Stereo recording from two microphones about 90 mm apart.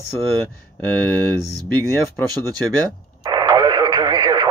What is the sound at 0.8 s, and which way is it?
Speech, 20° left (ahead or behind).